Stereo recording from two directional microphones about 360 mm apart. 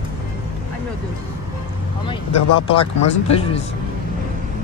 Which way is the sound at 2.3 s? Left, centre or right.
Left.